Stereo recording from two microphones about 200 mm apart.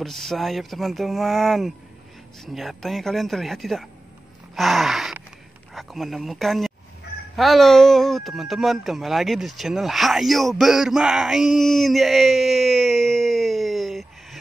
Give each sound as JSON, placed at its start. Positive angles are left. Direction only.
{"t": 0.0, "sound": "speech", "side_deg": 0}